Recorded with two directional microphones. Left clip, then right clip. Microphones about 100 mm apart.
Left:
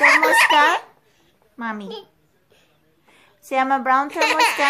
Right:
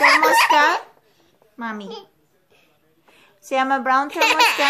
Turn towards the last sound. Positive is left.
turn(degrees=5)  # may be behind; listen again after turning